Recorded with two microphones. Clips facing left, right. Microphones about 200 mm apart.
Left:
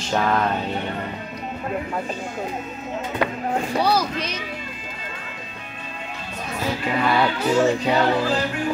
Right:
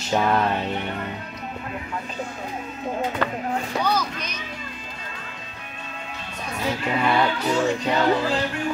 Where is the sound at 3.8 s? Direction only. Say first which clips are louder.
Left 4 dB; 35° left (ahead or behind).